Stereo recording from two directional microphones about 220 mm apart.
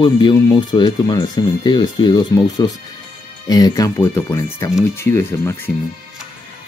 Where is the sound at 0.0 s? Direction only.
20° left (ahead or behind).